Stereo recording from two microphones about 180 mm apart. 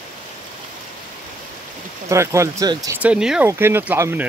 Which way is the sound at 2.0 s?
15° right (ahead or behind).